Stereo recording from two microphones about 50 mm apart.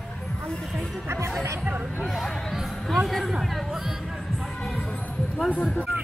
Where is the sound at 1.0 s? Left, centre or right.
Right.